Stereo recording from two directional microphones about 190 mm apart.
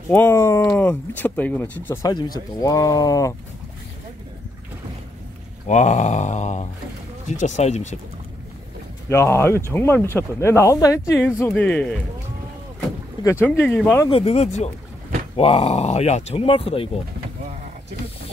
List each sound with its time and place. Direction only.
0.1 s speech: 10° left (ahead or behind)
5.7 s speech: 40° left (ahead or behind)
9.1 s speech: 15° left (ahead or behind)
13.2 s speech: 15° left (ahead or behind)
14.0 s speech: 30° left (ahead or behind)